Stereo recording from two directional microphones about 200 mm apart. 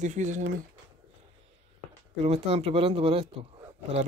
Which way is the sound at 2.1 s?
30° right (ahead or behind).